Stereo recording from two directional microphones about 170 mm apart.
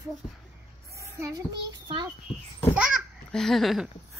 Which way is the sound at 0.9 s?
15° right (ahead or behind).